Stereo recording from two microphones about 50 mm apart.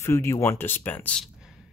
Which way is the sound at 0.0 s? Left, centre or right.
Left.